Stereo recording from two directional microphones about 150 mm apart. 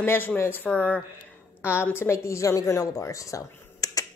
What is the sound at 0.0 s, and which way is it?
A woman's voice, 15° left (ahead or behind).